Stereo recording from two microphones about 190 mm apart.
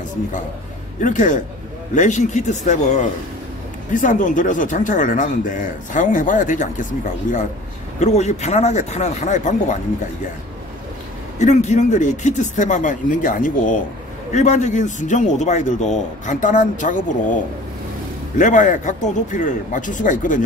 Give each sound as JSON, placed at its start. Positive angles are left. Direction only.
{"t": 1.0, "sound": "speech", "side_deg": 40}
{"t": 11.3, "sound": "speech", "side_deg": 40}
{"t": 18.4, "sound": "speech", "side_deg": 40}